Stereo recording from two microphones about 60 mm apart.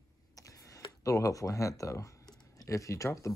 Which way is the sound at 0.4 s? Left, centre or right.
Left.